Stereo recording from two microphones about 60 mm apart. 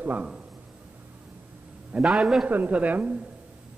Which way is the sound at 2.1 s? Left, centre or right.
Centre.